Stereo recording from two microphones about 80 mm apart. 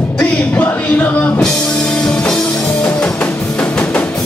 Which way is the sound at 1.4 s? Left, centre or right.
Centre.